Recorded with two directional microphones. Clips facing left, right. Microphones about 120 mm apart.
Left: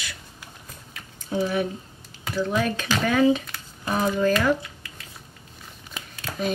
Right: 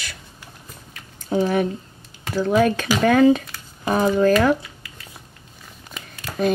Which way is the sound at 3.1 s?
50° right (ahead or behind).